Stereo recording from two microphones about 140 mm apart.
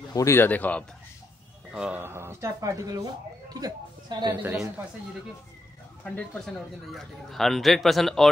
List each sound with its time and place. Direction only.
0.1 s speech: 20° left (ahead or behind)
1.7 s speech: 10° right (ahead or behind); by 4.3 s 30° right (ahead or behind)
4.3 s a woman's voice: 15° right (ahead or behind)
6.0 s speech: 5° left (ahead or behind)